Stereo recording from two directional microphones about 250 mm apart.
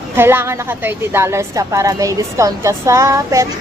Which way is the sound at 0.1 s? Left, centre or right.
Centre.